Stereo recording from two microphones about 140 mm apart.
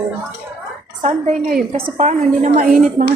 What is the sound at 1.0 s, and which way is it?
A woman's voice, 50° right (ahead or behind).